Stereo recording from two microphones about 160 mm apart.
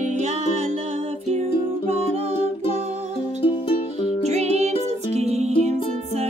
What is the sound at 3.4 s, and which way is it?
Music, 35° left (ahead or behind).